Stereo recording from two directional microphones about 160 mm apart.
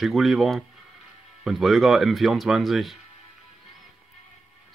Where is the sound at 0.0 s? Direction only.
Centre (ahead or behind).